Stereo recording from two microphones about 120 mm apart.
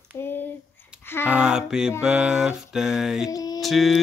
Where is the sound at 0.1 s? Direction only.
20° left (ahead or behind).